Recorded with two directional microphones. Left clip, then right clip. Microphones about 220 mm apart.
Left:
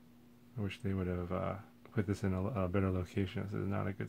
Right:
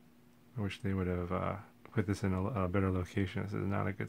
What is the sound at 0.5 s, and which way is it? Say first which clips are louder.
Speech: right 2 dB; 15° right (ahead or behind).